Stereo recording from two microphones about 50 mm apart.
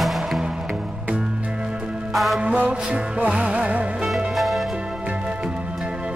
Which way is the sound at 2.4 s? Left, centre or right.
Right.